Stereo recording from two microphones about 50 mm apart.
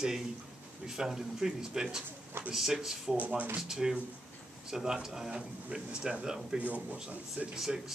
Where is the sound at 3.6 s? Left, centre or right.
Centre.